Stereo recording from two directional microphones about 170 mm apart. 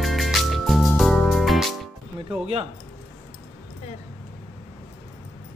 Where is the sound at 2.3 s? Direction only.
35° right (ahead or behind).